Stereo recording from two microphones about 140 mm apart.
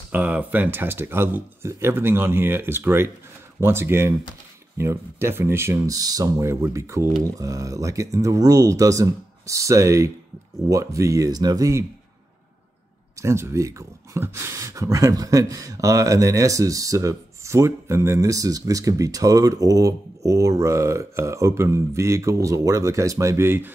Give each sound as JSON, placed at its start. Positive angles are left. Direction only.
{"t": 0.1, "sound": "speech", "side_deg": -10}
{"t": 13.2, "sound": "speech", "side_deg": -20}